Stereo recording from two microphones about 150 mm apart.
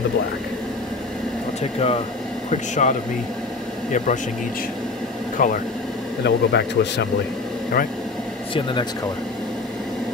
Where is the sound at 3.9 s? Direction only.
55° left (ahead or behind).